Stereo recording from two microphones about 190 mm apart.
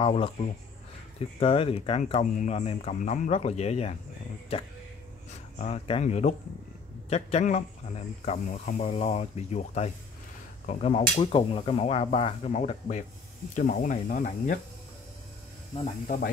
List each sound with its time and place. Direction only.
0.0 s speech: 30° left (ahead or behind)
5.6 s speech: 35° left (ahead or behind)